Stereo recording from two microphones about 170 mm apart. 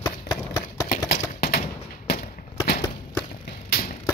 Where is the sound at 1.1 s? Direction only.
60° left (ahead or behind).